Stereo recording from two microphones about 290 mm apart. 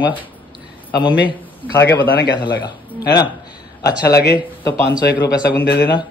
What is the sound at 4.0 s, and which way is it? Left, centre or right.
A man's voice, left.